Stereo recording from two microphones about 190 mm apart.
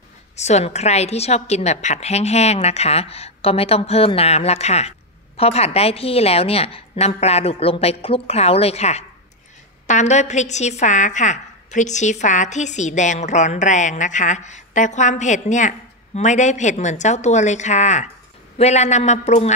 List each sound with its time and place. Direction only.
0.4 s a woman's voice: 35° left (ahead or behind)